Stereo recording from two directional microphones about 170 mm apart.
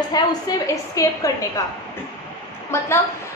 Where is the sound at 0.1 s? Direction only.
25° left (ahead or behind).